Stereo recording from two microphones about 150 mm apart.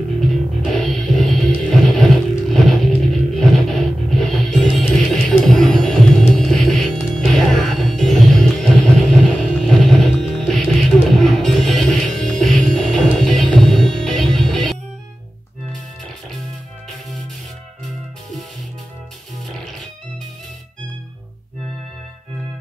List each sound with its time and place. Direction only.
0.7 s music: centre (ahead or behind)